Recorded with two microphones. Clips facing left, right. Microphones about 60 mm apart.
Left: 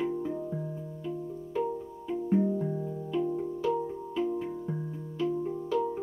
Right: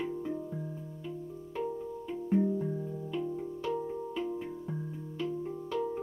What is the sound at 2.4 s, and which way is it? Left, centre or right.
Music, centre.